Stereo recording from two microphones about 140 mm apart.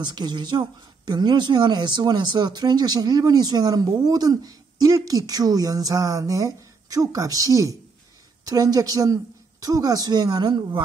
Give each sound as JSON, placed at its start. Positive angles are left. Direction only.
{"t": 0.0, "sound": "speech", "side_deg": -30}